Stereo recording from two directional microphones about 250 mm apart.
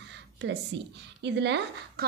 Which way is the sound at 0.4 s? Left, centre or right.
Right.